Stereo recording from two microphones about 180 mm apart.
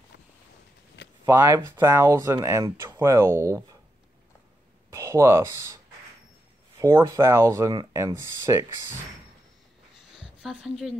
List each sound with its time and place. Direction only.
1.2 s speech: 15° right (ahead or behind)
4.9 s speech: 15° right (ahead or behind)
6.8 s speech: 15° right (ahead or behind)
9.9 s a sound: 5° right (ahead or behind)